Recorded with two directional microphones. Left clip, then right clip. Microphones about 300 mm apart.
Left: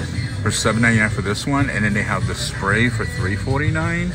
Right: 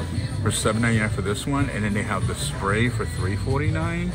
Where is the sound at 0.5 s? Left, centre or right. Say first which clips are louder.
Left 6 dB; centre.